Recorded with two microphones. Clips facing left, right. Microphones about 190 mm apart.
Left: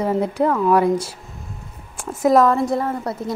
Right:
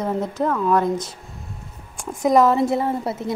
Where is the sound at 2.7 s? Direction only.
25° right (ahead or behind).